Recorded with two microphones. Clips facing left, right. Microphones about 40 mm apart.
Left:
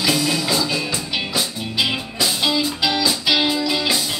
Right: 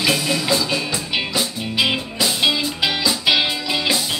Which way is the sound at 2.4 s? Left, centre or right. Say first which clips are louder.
Right 1 dB; right.